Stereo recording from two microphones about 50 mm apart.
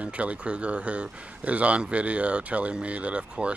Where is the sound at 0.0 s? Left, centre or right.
Right.